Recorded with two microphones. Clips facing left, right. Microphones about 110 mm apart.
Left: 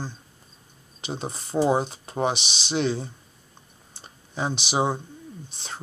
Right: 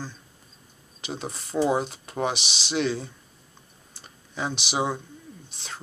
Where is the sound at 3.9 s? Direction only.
30° left (ahead or behind).